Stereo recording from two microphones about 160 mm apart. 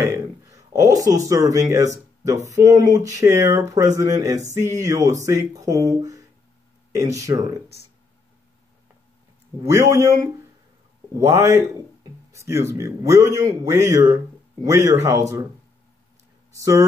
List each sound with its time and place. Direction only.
0.0 s speech: 20° right (ahead or behind)
9.6 s speech: 20° right (ahead or behind)
16.5 s speech: 20° right (ahead or behind)